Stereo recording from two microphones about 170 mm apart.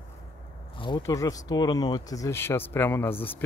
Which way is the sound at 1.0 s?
20° left (ahead or behind).